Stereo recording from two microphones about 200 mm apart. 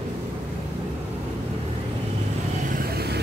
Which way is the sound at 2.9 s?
55° right (ahead or behind).